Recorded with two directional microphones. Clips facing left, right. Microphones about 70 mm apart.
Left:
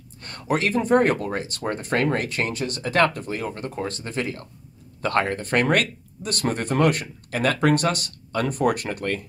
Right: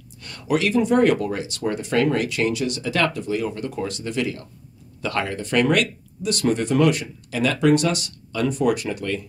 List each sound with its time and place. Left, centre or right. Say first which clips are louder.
0.2 s speech: right 2 dB; left